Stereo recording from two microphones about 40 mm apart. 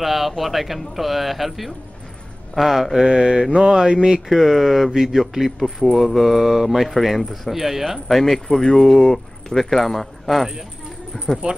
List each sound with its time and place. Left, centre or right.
0.0 s speech: centre
3.1 s mantra: centre
4.3 s a man's voice: centre
5.6 s speech: centre
11.4 s mantra: right